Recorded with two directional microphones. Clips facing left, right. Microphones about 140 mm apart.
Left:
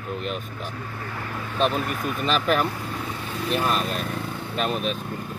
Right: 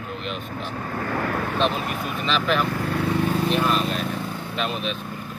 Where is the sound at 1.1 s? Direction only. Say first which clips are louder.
Right 10 dB; 70° right (ahead or behind).